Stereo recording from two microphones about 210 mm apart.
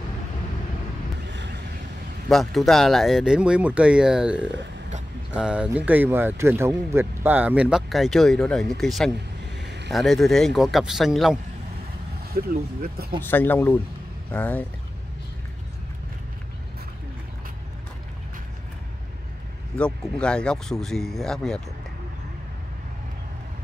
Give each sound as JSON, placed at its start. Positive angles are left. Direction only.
{"t": 1.3, "sound": "vehicle", "side_deg": -55}
{"t": 2.2, "sound": "speech", "side_deg": 0}
{"t": 9.6, "sound": "a sound", "side_deg": -55}
{"t": 9.8, "sound": "speech", "side_deg": 0}
{"t": 12.3, "sound": "speech", "side_deg": -45}
{"t": 13.2, "sound": "speech", "side_deg": 10}
{"t": 19.8, "sound": "speech", "side_deg": 5}